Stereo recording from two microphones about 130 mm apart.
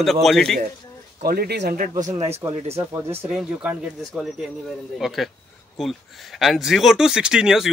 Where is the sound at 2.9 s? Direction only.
20° right (ahead or behind).